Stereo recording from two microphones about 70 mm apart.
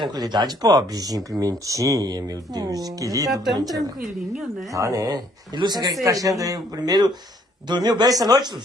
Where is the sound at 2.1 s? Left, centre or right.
Right.